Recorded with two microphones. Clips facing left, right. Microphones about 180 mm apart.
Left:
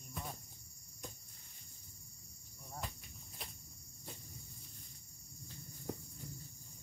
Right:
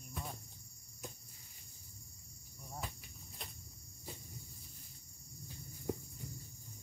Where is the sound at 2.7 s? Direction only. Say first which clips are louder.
Even; centre (ahead or behind).